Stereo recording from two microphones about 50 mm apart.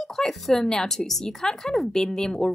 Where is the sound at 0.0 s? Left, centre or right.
Centre.